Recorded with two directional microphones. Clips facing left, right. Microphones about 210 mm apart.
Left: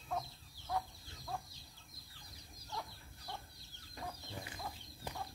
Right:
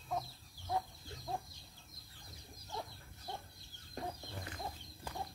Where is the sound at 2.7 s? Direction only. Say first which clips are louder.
Right 1 dB; 20° right (ahead or behind).